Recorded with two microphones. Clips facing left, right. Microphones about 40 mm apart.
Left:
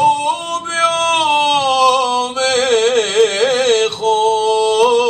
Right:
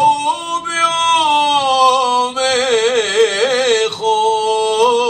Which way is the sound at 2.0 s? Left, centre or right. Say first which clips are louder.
Right 1 dB; right.